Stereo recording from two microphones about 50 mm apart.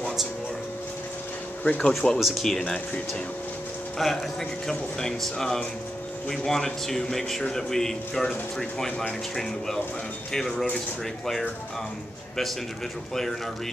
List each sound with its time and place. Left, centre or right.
1.6 s speech: left
2.1 s speech: centre
4.0 s a man's voice: centre
13.1 s a man's voice: centre